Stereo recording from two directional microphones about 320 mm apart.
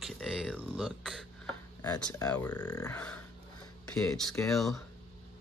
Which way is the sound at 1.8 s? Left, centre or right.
Centre.